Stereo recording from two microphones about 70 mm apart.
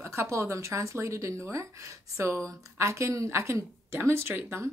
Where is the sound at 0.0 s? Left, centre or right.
Right.